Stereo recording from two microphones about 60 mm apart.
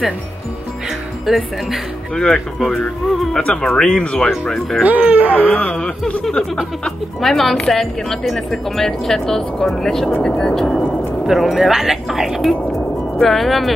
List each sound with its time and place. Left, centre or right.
1.2 s a woman's voice: centre
2.1 s speech: centre
4.5 s a woman's voice: centre
4.8 s speech: right
5.6 s speech: centre
7.2 s a woman's voice: centre
11.2 s a woman's voice: centre